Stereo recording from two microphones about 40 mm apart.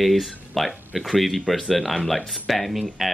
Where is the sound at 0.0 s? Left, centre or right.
Centre.